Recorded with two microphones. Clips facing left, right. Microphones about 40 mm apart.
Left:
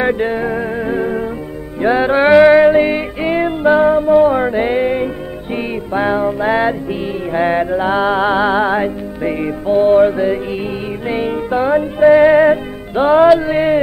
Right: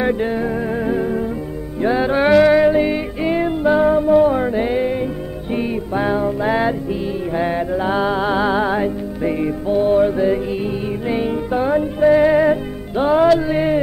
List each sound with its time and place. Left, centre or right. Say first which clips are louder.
0.0 s music: left 3 dB; left